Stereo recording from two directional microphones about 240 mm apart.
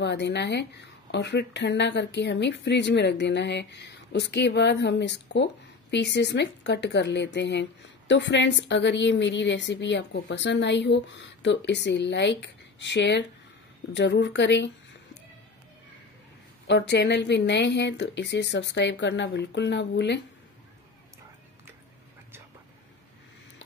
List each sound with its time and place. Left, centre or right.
0.0 s speech: left
16.6 s speech: left